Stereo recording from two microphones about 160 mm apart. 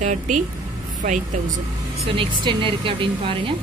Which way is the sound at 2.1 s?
30° right (ahead or behind).